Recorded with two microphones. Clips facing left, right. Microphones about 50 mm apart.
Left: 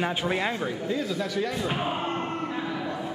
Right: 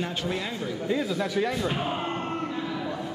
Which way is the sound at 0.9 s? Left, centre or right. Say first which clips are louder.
Right 4 dB; centre.